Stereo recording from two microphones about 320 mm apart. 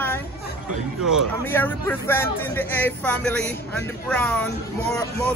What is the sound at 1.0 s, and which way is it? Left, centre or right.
A man's voice, centre.